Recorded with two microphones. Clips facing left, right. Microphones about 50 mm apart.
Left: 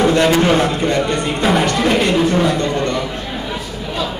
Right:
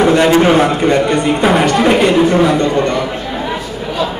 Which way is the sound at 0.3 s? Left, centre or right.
Centre.